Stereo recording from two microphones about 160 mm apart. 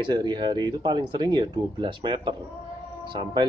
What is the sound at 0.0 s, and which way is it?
Speech, 30° right (ahead or behind).